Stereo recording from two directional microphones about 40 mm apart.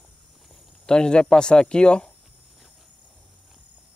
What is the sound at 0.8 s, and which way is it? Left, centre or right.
Speech, left.